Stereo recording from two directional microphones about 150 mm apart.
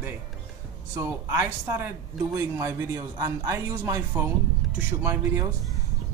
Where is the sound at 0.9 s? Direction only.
15° right (ahead or behind).